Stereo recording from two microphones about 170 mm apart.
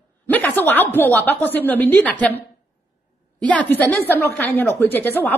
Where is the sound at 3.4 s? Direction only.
10° left (ahead or behind).